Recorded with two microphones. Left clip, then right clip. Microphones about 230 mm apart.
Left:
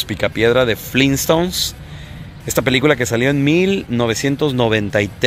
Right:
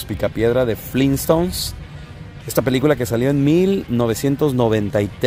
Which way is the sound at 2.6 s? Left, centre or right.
Centre.